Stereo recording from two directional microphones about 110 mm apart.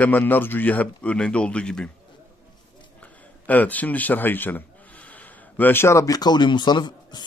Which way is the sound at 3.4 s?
15° left (ahead or behind).